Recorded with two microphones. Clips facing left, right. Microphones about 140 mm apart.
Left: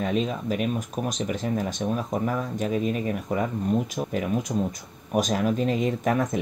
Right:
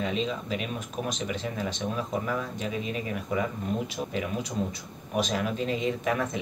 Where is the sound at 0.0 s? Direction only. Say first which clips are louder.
Left 4 dB; 50° left (ahead or behind).